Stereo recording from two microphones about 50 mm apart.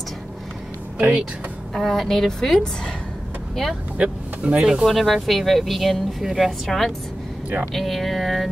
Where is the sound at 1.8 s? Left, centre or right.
Centre.